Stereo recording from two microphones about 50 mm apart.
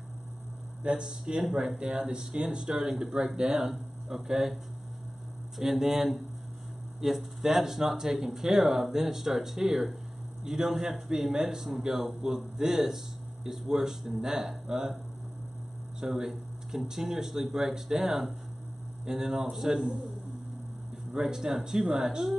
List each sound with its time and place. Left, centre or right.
0.8 s speech: centre
5.6 s speech: centre
16.0 s speech: centre
21.2 s speech: centre